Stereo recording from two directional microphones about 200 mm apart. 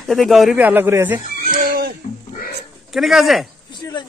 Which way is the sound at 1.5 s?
45° right (ahead or behind).